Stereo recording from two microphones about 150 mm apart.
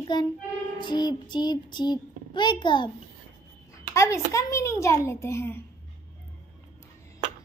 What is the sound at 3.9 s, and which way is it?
A child's voice, 20° left (ahead or behind).